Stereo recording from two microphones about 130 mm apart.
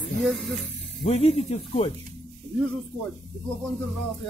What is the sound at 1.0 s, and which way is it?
Speech, 50° left (ahead or behind).